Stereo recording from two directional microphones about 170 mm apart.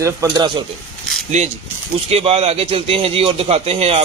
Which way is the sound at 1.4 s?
45° right (ahead or behind).